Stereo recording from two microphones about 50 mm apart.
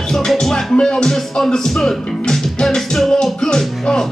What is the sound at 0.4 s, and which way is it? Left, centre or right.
Music, centre.